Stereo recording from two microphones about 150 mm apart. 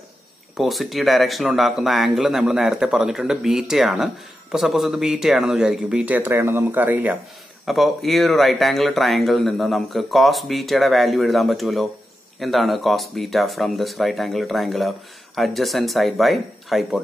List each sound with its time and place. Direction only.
0.6 s speech: centre (ahead or behind)
7.6 s speech: centre (ahead or behind)